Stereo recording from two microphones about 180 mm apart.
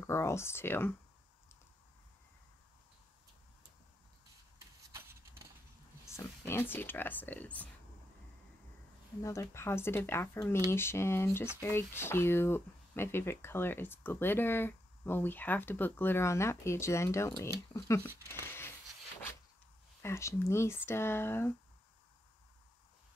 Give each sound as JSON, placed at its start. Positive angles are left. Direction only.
{"t": 0.0, "sound": "speech", "side_deg": 15}
{"t": 4.9, "sound": "a sound", "side_deg": -15}
{"t": 6.0, "sound": "speech", "side_deg": 15}
{"t": 9.2, "sound": "speech", "side_deg": 15}
{"t": 18.0, "sound": "speech", "side_deg": -15}
{"t": 20.0, "sound": "speech", "side_deg": 15}